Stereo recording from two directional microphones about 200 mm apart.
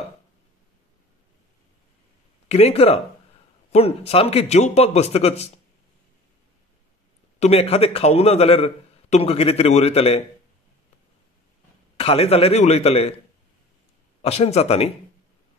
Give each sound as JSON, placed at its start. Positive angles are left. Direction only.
{"t": 2.4, "sound": "a man's voice", "side_deg": 30}
{"t": 7.3, "sound": "a man's voice", "side_deg": 30}
{"t": 12.0, "sound": "a man's voice", "side_deg": 30}
{"t": 14.2, "sound": "a man's voice", "side_deg": 30}